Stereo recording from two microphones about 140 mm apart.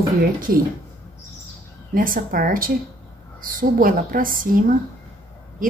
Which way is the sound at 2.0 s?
90° right.